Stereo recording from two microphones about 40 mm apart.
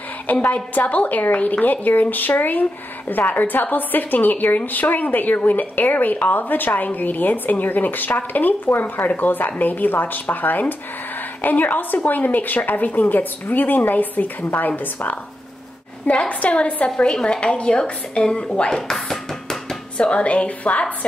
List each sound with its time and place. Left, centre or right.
0.3 s a woman's voice: left
16.1 s a woman's voice: left
17.0 s a woman's voice: left
18.6 s speech: centre
18.9 s a sound: centre
20.0 s a woman's voice: left